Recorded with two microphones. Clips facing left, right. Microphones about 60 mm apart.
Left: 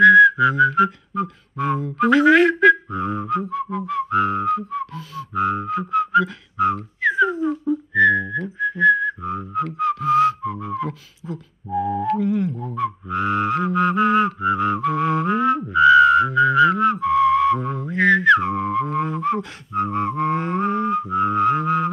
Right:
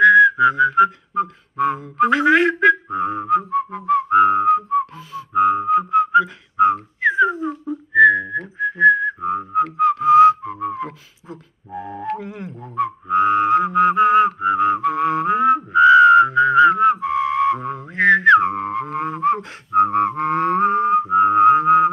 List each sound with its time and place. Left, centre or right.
0.0 s whistling: centre
1.6 s a sound: right
9.4 s whistling: centre
10.6 s beatboxing: right
12.0 s music: right
19.7 s whistling: right
21.1 s mantra: right